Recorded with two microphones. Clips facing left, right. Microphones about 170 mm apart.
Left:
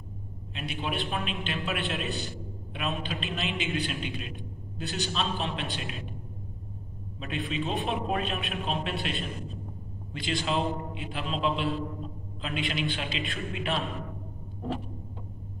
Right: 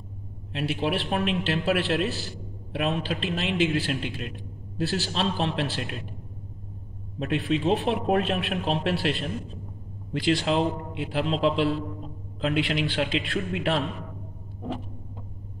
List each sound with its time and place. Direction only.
0.5 s a man's voice: 75° right (ahead or behind)
7.2 s a man's voice: 75° right (ahead or behind)
10.2 s a man's voice: 70° right (ahead or behind)